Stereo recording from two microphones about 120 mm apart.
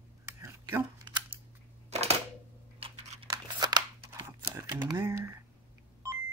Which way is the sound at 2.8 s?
50° right (ahead or behind).